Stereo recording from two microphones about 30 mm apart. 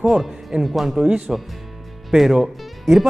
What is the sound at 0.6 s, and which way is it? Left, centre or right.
A man's voice, centre.